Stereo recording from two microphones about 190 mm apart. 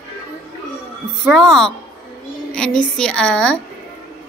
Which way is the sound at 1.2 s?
Centre (ahead or behind).